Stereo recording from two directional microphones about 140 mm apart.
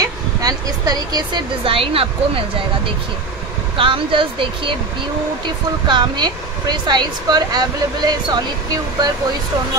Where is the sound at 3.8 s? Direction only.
35° right (ahead or behind).